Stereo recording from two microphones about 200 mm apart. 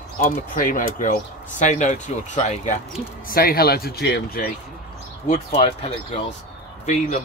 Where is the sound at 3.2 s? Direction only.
50° left (ahead or behind).